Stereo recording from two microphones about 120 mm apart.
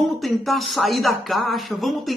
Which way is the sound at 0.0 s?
Centre (ahead or behind).